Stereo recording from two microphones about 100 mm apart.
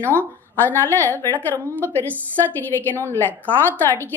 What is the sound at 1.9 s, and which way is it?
A woman's voice, 20° left (ahead or behind).